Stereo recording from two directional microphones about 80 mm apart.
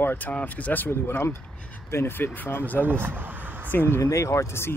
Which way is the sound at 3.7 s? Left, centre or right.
Left.